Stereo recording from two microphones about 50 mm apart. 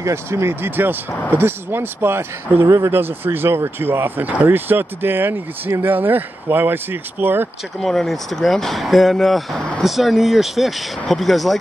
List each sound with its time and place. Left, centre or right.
0.0 s speech: right
0.6 s speech: right
2.6 s speech: right
2.9 s speech: right
7.8 s speech: centre